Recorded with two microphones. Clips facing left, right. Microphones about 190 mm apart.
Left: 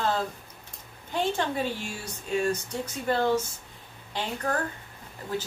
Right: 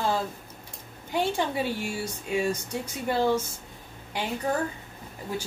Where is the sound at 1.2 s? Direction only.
10° right (ahead or behind).